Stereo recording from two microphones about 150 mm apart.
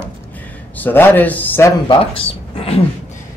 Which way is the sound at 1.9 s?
35° left (ahead or behind).